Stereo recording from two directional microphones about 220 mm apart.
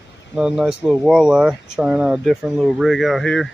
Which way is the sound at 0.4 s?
5° right (ahead or behind).